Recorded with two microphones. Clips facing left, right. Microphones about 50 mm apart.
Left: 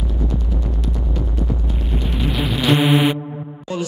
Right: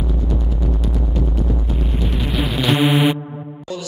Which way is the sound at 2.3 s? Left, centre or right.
Centre.